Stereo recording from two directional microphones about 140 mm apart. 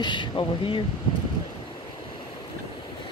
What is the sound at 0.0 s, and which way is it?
Speech, 35° left (ahead or behind).